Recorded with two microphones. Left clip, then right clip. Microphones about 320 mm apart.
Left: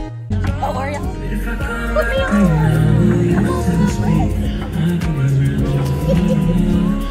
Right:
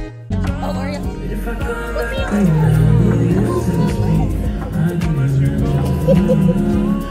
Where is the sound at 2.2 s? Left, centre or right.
Right.